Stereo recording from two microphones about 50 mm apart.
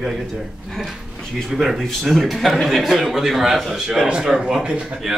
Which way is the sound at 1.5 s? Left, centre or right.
Centre.